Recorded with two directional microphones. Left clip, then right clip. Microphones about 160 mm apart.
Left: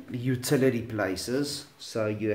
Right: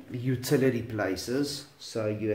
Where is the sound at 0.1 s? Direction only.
30° left (ahead or behind).